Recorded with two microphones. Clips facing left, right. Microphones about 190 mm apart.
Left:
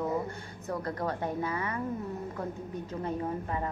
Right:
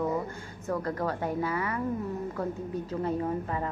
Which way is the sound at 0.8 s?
25° left (ahead or behind).